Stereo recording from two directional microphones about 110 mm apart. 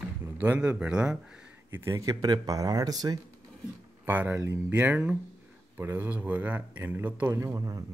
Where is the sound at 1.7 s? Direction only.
25° right (ahead or behind).